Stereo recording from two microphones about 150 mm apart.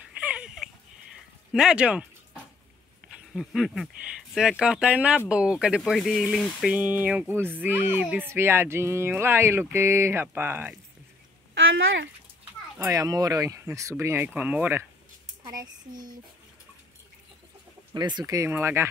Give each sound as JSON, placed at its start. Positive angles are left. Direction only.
{"t": 0.2, "sound": "a sound", "side_deg": -5}
{"t": 1.5, "sound": "speech", "side_deg": -5}
{"t": 3.1, "sound": "speech", "side_deg": 0}
{"t": 6.7, "sound": "speech", "side_deg": -10}
{"t": 12.7, "sound": "speech", "side_deg": -20}
{"t": 15.4, "sound": "speech", "side_deg": -25}
{"t": 17.9, "sound": "speech", "side_deg": -30}